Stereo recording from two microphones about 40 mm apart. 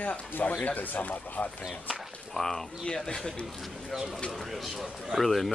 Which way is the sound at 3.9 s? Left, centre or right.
Centre.